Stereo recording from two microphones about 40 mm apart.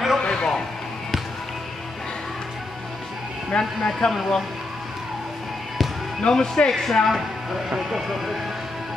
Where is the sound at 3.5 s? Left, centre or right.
Left.